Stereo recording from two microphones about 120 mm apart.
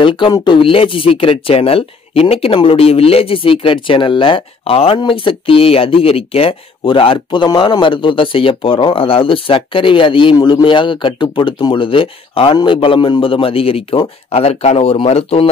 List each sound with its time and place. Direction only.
0.0 s speech: 45° left (ahead or behind)